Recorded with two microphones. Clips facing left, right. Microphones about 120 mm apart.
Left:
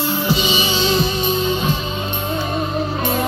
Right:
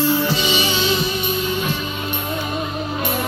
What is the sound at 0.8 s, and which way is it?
Music, 30° left (ahead or behind).